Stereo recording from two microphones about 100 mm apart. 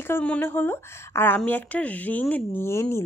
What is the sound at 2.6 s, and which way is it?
Speech, 25° left (ahead or behind).